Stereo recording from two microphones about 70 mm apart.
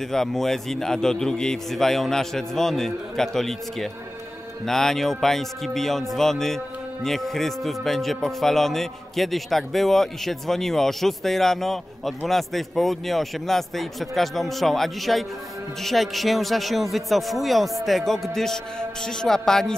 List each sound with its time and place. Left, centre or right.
0.1 s speech: centre